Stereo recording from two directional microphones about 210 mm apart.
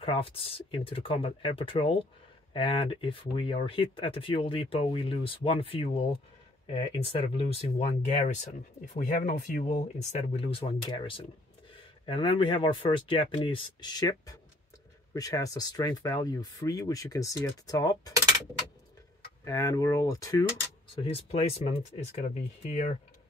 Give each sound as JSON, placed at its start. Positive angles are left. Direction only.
{"t": 0.0, "sound": "speech", "side_deg": 25}
{"t": 19.4, "sound": "speech", "side_deg": 15}
{"t": 20.9, "sound": "speech", "side_deg": 25}